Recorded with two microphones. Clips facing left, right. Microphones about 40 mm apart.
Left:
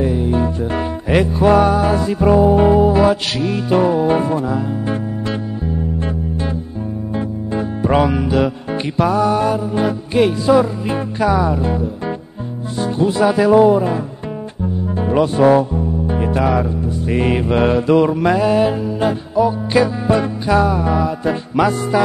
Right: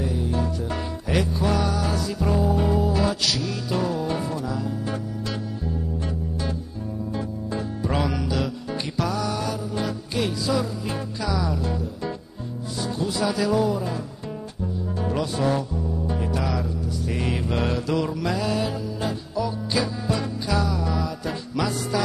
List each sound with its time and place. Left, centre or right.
0.0 s music: left
7.2 s music: left
8.9 s mantra: left
15.0 s music: left
17.1 s mantra: left